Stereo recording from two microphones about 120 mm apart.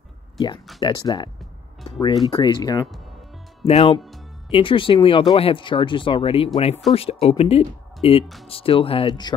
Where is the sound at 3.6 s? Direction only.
55° left (ahead or behind).